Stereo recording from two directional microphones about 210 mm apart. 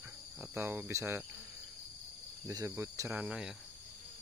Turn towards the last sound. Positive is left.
turn(degrees=-5)  # may be behind; listen again after turning